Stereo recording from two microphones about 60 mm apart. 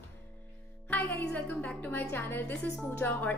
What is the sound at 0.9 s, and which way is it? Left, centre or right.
A woman's voice, left.